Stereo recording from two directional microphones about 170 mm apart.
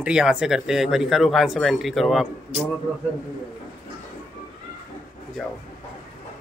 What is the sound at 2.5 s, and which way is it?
Speech, 40° right (ahead or behind).